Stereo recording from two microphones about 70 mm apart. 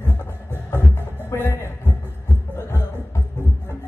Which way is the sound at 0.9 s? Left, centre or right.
Left.